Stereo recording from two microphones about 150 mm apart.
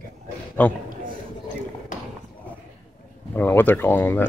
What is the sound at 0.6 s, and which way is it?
Speech, 10° left (ahead or behind).